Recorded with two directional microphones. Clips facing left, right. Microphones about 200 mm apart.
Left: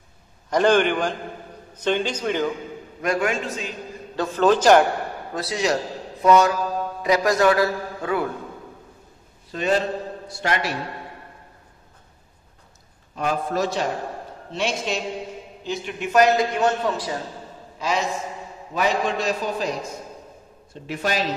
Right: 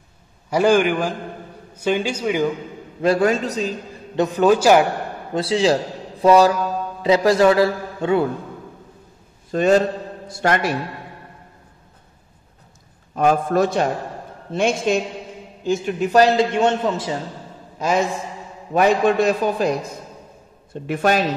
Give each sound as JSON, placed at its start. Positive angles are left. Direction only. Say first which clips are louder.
{"t": 0.5, "sound": "a man's voice", "louder": "right 2 dB", "side_deg": -10}
{"t": 3.0, "sound": "a man's voice", "louder": "right 6 dB", "side_deg": -35}
{"t": 4.1, "sound": "a man's voice", "louder": "right 3 dB", "side_deg": -20}
{"t": 5.3, "sound": "a man's voice", "louder": "right 6 dB", "side_deg": -25}
{"t": 9.5, "sound": "a man's voice", "louder": "right 6 dB", "side_deg": -45}
{"t": 13.1, "sound": "a man's voice", "louder": "right 7 dB", "side_deg": -50}
{"t": 17.7, "sound": "a man's voice", "louder": "right 5 dB", "side_deg": -50}
{"t": 20.7, "sound": "a man's voice", "louder": "right 7 dB", "side_deg": -55}